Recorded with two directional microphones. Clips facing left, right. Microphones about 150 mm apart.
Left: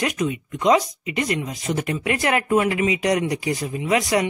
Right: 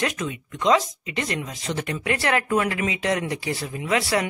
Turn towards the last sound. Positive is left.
turn(degrees=20)  # may be behind; listen again after turning